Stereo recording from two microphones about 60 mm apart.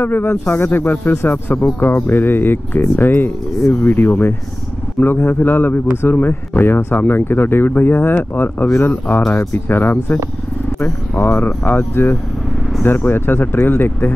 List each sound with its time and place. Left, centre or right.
0.0 s a man's voice: left